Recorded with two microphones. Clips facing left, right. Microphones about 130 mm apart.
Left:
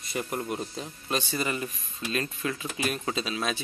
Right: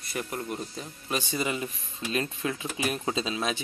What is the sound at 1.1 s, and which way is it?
Speech, 15° right (ahead or behind).